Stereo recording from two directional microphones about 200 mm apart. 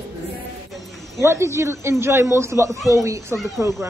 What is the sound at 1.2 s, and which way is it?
A woman's voice, 15° right (ahead or behind).